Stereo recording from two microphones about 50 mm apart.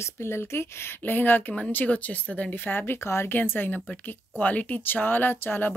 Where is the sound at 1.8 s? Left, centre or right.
Left.